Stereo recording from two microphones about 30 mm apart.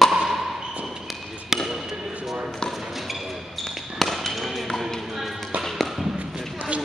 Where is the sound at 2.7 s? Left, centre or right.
Centre.